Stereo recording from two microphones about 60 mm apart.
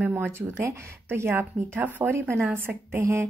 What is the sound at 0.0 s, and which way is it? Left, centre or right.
A woman's voice, right.